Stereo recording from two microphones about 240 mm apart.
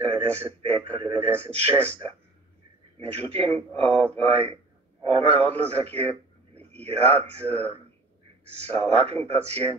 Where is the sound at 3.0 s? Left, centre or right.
Right.